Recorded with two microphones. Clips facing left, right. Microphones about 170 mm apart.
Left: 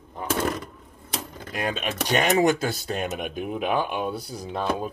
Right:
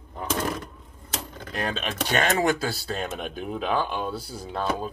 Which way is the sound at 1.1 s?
10° left (ahead or behind).